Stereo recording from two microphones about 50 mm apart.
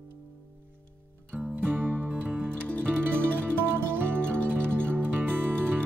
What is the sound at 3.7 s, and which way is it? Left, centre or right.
Music, right.